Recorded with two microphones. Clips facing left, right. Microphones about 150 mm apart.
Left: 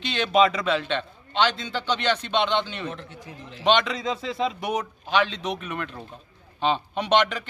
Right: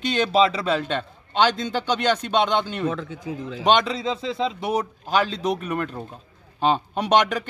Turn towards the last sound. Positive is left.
turn(degrees=-40)  # may be behind; listen again after turning